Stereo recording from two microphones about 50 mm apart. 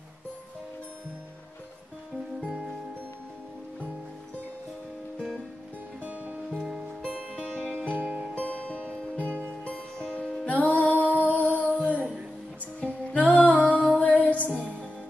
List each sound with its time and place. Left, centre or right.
6.0 s music: right
8.4 s music: left
10.5 s music: left